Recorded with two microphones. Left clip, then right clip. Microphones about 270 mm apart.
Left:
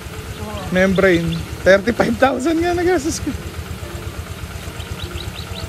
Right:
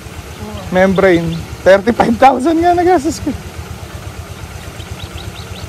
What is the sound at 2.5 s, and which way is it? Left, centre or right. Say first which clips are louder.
Speech: right 7 dB; right.